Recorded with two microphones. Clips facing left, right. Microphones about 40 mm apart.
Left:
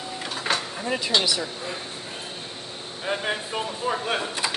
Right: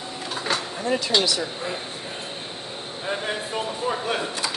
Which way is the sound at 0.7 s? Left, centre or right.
Centre.